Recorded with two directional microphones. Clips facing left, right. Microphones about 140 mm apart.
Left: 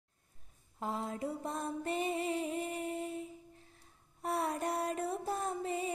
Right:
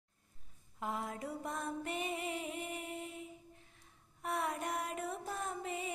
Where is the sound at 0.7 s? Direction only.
30° left (ahead or behind).